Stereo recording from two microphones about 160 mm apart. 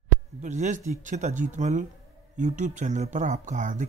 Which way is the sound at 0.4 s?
50° right (ahead or behind).